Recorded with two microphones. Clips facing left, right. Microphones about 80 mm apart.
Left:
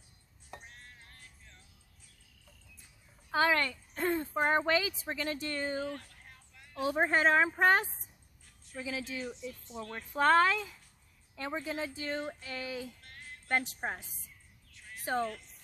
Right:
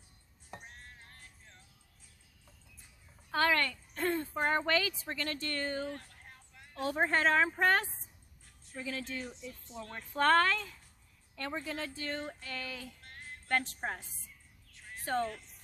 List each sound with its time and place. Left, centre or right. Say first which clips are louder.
0.5 s music: right 1 dB; right
3.3 s a woman's voice: left 1 dB; centre
5.9 s a sound: left 2 dB; right
6.7 s speech: left 2 dB; centre
13.0 s music: right 1 dB; right
13.5 s speech: left 1 dB; centre
15.1 s speech: even; centre